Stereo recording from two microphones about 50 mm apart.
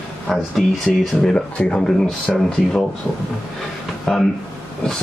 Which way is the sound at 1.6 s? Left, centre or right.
Left.